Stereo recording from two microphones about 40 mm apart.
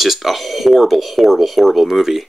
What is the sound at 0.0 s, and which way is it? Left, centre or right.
Speech, centre.